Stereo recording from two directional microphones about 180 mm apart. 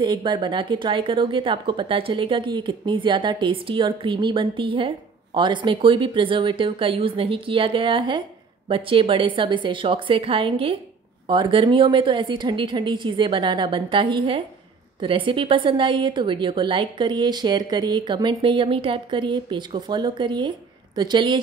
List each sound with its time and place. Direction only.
0.0 s a woman's voice: 25° right (ahead or behind)